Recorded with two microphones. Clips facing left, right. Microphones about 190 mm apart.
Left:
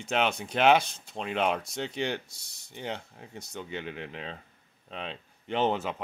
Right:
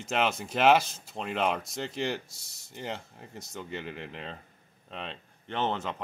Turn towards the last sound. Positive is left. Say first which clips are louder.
# left 3 dB
turn(degrees=10)  # may be behind; listen again after turning